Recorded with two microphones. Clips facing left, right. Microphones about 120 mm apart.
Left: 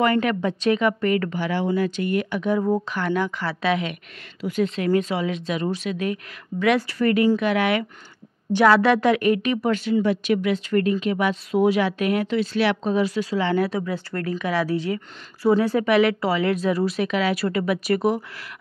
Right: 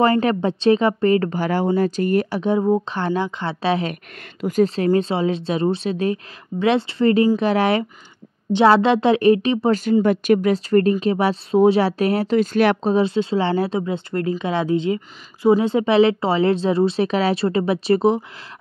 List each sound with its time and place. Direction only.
0.0 s a woman's voice: 35° right (ahead or behind)
4.4 s a woman's voice: 40° right (ahead or behind)
10.0 s speech: 50° right (ahead or behind)
12.8 s a woman's voice: 30° right (ahead or behind)